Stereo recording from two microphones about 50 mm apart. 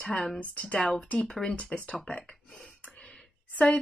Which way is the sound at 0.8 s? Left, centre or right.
Centre.